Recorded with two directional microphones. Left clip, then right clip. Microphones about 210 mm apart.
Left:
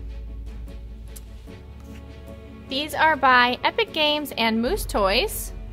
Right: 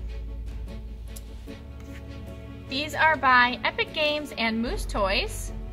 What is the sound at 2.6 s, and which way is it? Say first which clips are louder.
A woman's voice: left 2 dB; 55° left (ahead or behind).